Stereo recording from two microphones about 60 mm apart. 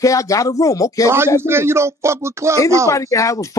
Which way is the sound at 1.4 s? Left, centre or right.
Right.